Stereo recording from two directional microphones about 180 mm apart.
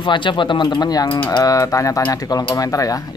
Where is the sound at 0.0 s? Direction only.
25° left (ahead or behind).